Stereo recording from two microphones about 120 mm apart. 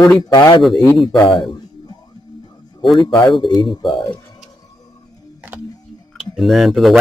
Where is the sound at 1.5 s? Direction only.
35° left (ahead or behind).